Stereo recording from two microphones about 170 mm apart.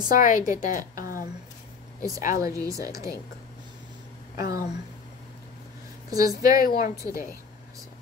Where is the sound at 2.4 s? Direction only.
20° right (ahead or behind).